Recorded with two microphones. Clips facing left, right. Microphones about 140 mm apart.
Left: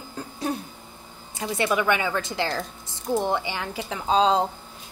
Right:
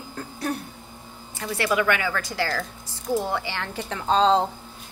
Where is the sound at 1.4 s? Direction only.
20° left (ahead or behind).